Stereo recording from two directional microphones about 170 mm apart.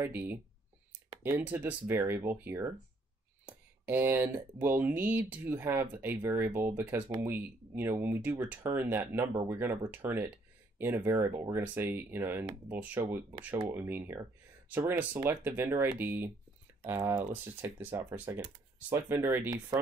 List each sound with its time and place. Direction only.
0.0 s speech: 10° right (ahead or behind)
3.4 s a sound: 10° right (ahead or behind)
4.4 s speech: 10° right (ahead or behind)
9.6 s speech: 10° right (ahead or behind)